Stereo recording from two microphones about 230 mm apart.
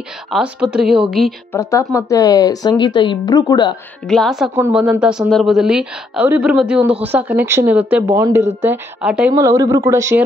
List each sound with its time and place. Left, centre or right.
0.3 s speech: centre
1.5 s speech: centre
4.1 s speech: centre